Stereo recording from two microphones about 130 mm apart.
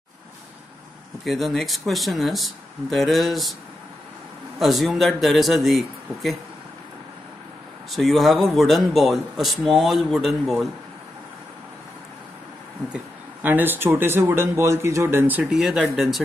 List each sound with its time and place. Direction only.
1.2 s speech: centre (ahead or behind)
4.6 s speech: centre (ahead or behind)
7.9 s speech: centre (ahead or behind)
12.9 s speech: 15° right (ahead or behind)
15.4 s speech: 5° right (ahead or behind)